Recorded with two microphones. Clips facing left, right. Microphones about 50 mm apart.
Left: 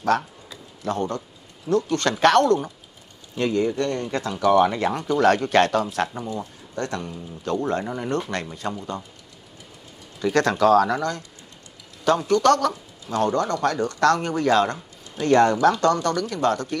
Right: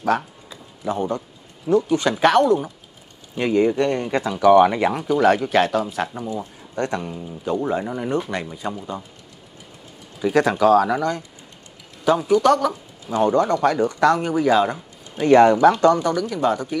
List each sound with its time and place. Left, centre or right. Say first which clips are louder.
0.0 s a sound: right 1 dB; centre
1.7 s a man's voice: right 3 dB; centre
3.3 s a man's voice: right 4 dB; centre
6.7 s speech: right 4 dB; centre
7.4 s a man's voice: right 2 dB; centre
10.2 s a man's voice: right 2 dB; centre